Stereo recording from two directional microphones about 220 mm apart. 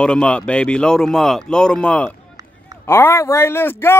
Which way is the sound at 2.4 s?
15° right (ahead or behind).